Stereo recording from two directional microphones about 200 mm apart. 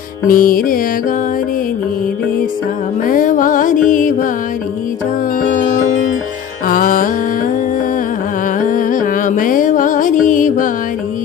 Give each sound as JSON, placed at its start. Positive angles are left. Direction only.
{"t": 0.3, "sound": "music", "side_deg": 45}
{"t": 3.1, "sound": "music", "side_deg": 40}
{"t": 6.7, "sound": "music", "side_deg": 45}
{"t": 8.5, "sound": "music", "side_deg": 40}